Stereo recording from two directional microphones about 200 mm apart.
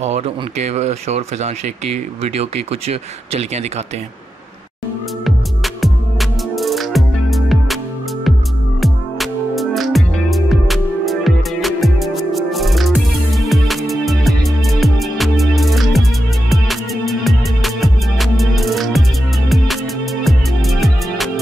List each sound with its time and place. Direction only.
0.0 s speech: 35° right (ahead or behind)
5.2 s music: centre (ahead or behind)
20.2 s music: centre (ahead or behind)